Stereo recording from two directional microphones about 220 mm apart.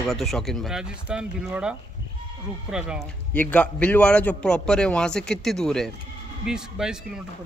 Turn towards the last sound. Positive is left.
turn(degrees=-5)  # may be behind; listen again after turning